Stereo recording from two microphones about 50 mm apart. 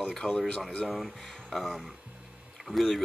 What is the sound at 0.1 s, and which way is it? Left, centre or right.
Speech, centre.